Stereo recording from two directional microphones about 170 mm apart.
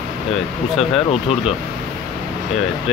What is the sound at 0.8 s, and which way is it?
Speech, 35° left (ahead or behind).